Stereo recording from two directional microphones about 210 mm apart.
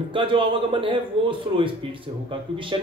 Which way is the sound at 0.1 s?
25° right (ahead or behind).